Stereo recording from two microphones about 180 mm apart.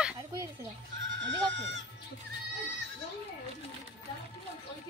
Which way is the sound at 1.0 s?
90° right.